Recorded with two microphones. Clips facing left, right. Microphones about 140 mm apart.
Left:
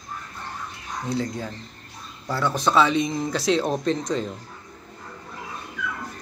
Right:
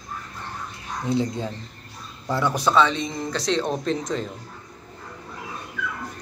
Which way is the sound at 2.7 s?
10° left (ahead or behind).